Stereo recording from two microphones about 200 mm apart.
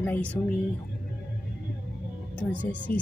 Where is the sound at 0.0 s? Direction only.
10° left (ahead or behind).